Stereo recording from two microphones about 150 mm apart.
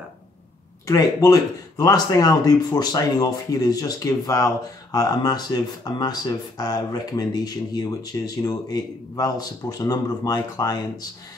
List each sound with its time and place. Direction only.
0.8 s speech: 25° left (ahead or behind)